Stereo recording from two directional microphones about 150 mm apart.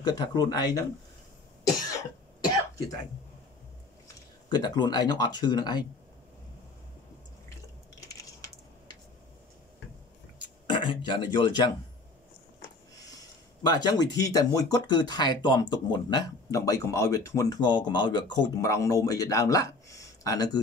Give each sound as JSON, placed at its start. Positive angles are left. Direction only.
{"t": 0.0, "sound": "speech", "side_deg": 25}
{"t": 1.9, "sound": "cough", "side_deg": 25}
{"t": 4.5, "sound": "speech", "side_deg": 30}
{"t": 10.7, "sound": "speech", "side_deg": 30}
{"t": 13.0, "sound": "speech", "side_deg": 25}